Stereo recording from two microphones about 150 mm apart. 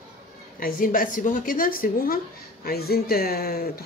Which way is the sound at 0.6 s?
70° left (ahead or behind).